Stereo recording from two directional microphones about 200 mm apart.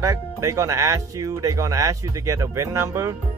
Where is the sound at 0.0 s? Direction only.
15° right (ahead or behind).